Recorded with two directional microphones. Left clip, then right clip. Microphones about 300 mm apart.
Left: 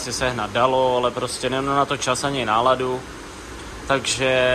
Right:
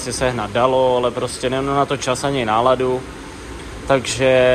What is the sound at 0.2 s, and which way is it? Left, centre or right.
A man's voice, centre.